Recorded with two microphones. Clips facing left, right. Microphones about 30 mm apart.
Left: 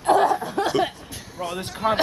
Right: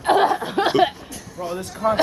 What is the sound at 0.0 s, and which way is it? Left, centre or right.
Chuckle, right.